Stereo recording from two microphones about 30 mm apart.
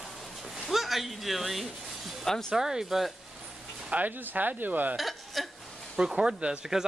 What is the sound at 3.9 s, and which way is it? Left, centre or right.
Speech, right.